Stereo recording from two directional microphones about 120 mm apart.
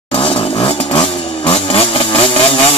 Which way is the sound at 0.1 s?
50° left (ahead or behind).